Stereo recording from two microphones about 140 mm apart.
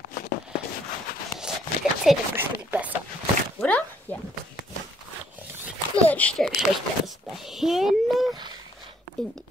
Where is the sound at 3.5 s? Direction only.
10° left (ahead or behind).